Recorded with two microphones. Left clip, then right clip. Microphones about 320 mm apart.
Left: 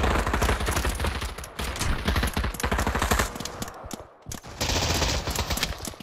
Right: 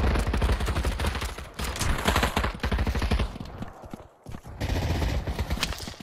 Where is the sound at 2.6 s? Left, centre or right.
Centre.